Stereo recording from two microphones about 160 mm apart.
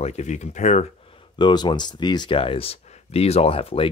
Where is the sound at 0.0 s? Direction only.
45° left (ahead or behind).